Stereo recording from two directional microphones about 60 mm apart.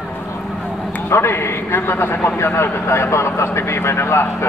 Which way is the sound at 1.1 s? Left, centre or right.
Left.